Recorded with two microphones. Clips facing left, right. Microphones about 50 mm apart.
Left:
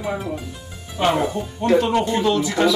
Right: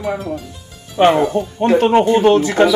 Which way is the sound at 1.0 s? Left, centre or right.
Right.